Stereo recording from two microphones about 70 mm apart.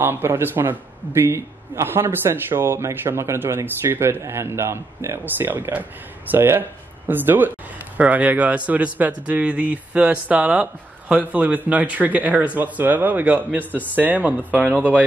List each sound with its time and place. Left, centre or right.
0.0 s a man's voice: right